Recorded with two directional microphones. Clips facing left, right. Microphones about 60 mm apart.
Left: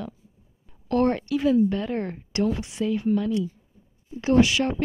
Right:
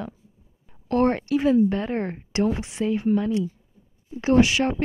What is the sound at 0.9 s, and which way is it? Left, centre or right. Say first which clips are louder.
A woman's voice: right 1 dB; right.